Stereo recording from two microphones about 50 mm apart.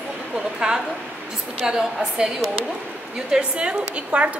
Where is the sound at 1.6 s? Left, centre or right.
Centre.